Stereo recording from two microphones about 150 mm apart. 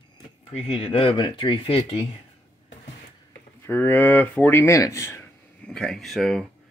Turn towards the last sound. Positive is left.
turn(degrees=0)  # may be behind; listen again after turning